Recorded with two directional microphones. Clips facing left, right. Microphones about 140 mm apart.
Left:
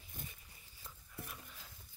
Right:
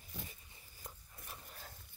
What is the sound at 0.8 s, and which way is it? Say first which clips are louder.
Dog: left 2 dB; 40° right (ahead or behind).